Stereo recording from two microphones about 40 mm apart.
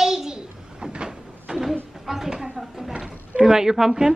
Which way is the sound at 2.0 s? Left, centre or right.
Centre.